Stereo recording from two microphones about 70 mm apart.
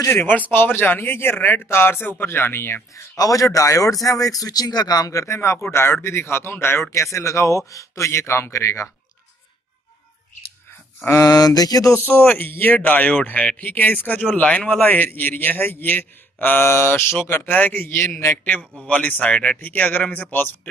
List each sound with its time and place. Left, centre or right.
0.2 s a man's voice: left
2.9 s a man's voice: left
11.1 s a man's voice: left
11.3 s a sound: left
12.0 s a man's voice: left
17.9 s a man's voice: left
18.9 s a man's voice: left